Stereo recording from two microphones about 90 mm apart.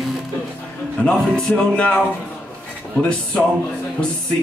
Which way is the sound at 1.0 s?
10° left (ahead or behind).